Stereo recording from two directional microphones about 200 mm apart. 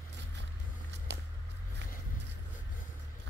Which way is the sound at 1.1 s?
60° right (ahead or behind).